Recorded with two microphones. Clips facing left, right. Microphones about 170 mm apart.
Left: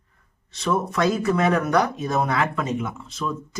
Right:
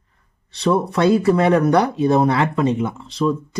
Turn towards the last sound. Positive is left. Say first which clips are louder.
# right 9 dB
turn(degrees=-30)  # may be behind; listen again after turning